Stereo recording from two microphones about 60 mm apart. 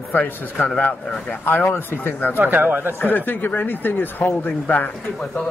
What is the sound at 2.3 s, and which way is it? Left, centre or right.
Speech, right.